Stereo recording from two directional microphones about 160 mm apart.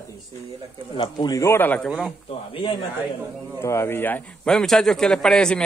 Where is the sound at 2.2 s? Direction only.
35° left (ahead or behind).